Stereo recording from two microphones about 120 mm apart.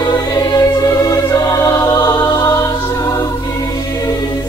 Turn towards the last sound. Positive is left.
turn(degrees=30)  # may be behind; listen again after turning